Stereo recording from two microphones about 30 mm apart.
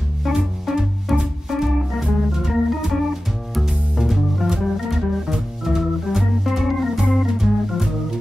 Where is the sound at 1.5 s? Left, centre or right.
Centre.